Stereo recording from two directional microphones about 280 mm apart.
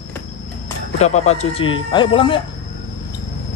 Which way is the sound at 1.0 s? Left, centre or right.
Left.